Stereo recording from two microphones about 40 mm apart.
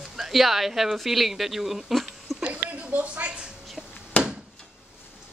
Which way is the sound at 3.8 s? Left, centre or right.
Centre.